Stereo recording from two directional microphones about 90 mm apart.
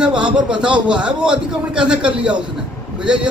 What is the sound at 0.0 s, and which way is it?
A man's voice, 10° right (ahead or behind).